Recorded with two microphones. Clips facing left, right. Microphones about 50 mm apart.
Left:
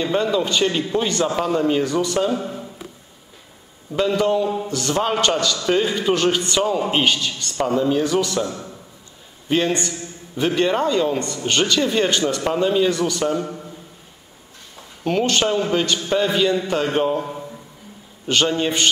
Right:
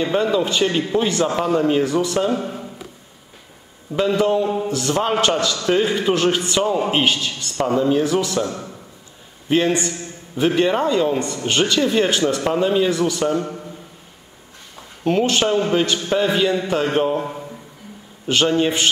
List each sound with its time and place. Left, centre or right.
0.0 s a man's voice: centre
2.4 s a sound: centre
3.9 s a man's voice: centre
9.5 s a man's voice: centre
14.8 s a man's voice: centre